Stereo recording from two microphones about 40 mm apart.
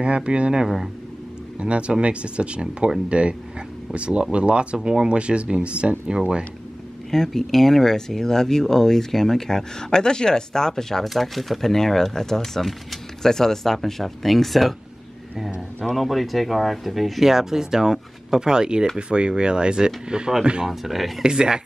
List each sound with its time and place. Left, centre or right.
0.0 s speech: right
4.7 s speech: centre
5.0 s speech: right
7.1 s speech: centre
15.8 s speech: centre
20.6 s speech: centre
21.2 s speech: centre